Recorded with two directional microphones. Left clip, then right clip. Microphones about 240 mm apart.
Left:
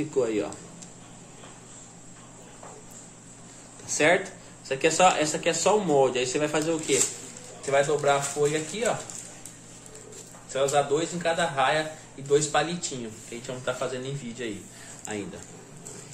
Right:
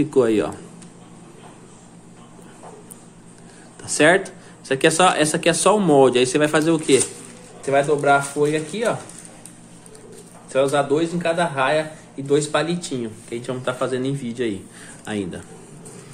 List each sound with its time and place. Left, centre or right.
0.1 s speech: right
3.8 s speech: right
10.5 s speech: right